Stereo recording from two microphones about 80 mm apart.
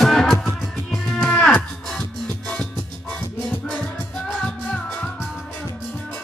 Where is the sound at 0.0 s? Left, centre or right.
Centre.